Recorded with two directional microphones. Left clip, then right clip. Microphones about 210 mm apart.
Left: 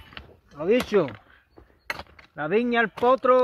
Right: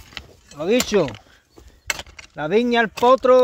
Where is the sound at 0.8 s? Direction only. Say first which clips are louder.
Right 4 dB; 45° right (ahead or behind).